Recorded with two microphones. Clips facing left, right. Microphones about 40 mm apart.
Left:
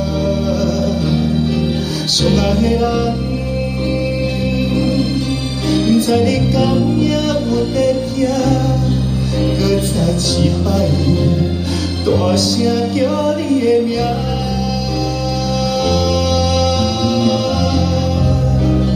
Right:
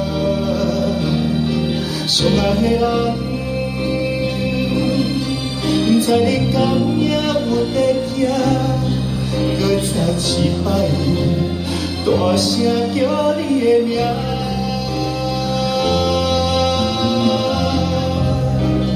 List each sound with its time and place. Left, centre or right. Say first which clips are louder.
2.1 s music: left 1 dB; right
5.7 s music: left 1 dB; right
9.7 s music: left 2 dB; right
12.2 s music: left 1 dB; right
15.8 s music: left 1 dB; right